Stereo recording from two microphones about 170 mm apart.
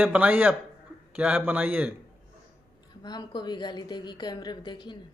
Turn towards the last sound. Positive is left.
turn(degrees=25)  # may be behind; listen again after turning